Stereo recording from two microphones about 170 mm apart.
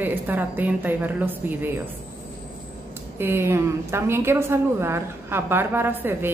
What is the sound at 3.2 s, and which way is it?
A woman's voice, 15° right (ahead or behind).